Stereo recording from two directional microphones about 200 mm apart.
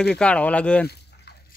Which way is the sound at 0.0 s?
5° left (ahead or behind).